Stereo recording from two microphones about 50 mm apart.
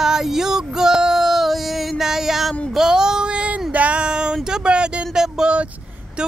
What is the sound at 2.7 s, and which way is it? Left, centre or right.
Child singing, centre.